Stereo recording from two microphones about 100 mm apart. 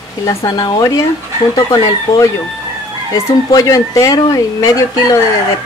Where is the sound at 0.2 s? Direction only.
30° left (ahead or behind).